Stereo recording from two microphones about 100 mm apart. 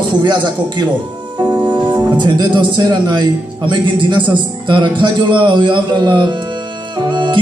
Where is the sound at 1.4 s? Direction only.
15° right (ahead or behind).